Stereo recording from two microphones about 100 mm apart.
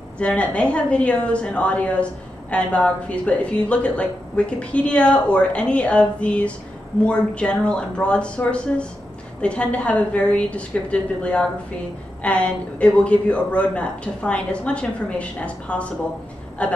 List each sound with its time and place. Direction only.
0.2 s a woman's voice: 10° left (ahead or behind)